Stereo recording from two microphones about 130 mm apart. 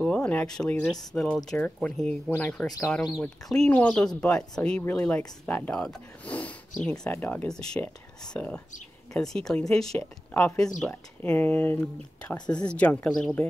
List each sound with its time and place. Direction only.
0.0 s speech: 10° left (ahead or behind)
12.4 s speech: 35° left (ahead or behind)
12.6 s speech: 10° left (ahead or behind)